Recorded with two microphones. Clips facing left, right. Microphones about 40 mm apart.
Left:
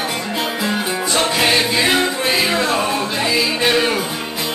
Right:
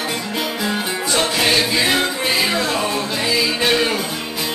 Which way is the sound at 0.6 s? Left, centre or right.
Centre.